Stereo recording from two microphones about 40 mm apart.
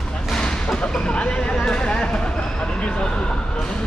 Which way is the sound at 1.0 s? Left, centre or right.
Left.